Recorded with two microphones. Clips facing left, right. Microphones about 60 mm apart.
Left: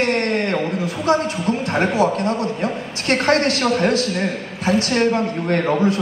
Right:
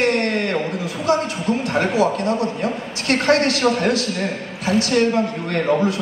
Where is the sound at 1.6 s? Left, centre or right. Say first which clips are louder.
Even; left.